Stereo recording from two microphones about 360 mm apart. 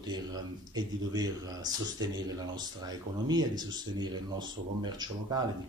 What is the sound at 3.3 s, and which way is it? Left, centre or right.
Speech, centre.